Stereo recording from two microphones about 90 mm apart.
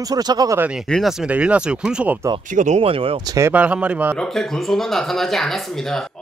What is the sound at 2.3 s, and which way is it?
Speech, 90° right.